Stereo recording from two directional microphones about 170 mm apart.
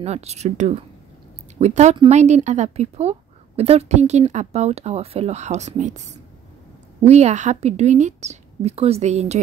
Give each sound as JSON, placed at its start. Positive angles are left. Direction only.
{"t": 0.0, "sound": "a woman's voice", "side_deg": -40}